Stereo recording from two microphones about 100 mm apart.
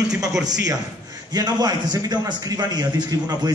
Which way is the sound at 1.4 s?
40° right (ahead or behind).